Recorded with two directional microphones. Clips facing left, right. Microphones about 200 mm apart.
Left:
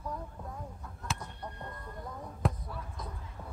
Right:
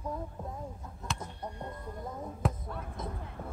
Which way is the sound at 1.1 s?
Centre (ahead or behind).